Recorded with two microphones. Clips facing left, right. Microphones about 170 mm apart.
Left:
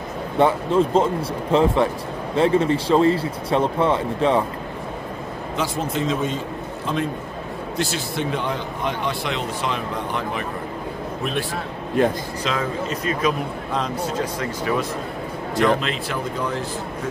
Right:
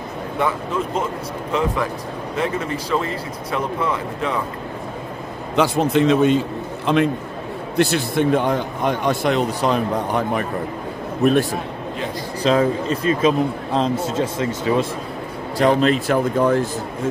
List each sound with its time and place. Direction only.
0.4 s speech: 30° left (ahead or behind)
5.6 s a man's voice: 70° right (ahead or behind)
7.7 s a man's voice: 60° right (ahead or behind); by 10.4 s 45° right (ahead or behind)
12.0 s speech: 50° left (ahead or behind)
12.4 s a man's voice: 30° right (ahead or behind)
15.5 s a man's voice: 40° right (ahead or behind)